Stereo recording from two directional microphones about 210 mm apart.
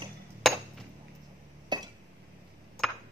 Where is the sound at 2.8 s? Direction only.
5° left (ahead or behind).